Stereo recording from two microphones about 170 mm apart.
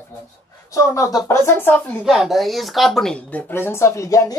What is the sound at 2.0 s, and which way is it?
Speech, centre (ahead or behind).